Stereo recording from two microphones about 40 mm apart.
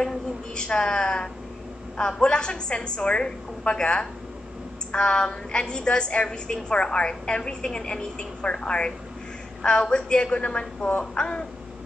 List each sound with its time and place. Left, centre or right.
0.0 s a sound: centre
0.7 s a woman's voice: left
10.9 s speech: left